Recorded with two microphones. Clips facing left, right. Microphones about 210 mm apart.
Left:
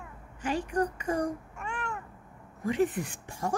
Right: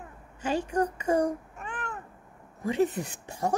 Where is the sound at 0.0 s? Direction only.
25° right (ahead or behind).